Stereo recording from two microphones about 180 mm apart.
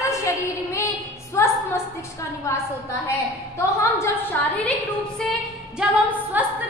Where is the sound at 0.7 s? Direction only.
15° left (ahead or behind).